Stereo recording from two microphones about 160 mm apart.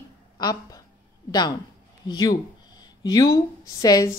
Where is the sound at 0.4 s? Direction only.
25° left (ahead or behind).